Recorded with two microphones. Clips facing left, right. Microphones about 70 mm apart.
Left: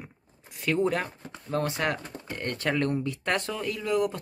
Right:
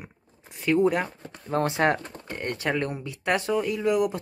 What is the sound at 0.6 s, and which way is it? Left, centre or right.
Speech, centre.